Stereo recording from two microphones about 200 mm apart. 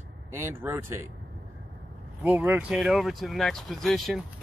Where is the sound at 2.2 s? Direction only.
10° right (ahead or behind).